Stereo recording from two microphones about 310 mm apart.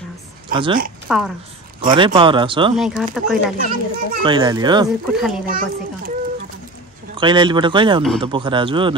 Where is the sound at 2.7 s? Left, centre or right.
Centre.